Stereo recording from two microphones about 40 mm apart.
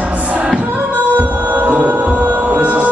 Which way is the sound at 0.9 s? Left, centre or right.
Right.